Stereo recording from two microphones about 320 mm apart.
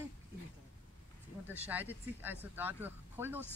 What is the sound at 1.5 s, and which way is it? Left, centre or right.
Speech, centre.